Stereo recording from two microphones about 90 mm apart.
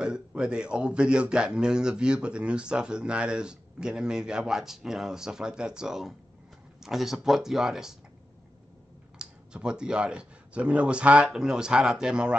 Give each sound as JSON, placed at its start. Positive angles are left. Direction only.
{"t": 0.0, "sound": "a man's voice", "side_deg": -10}
{"t": 9.2, "sound": "a man's voice", "side_deg": -10}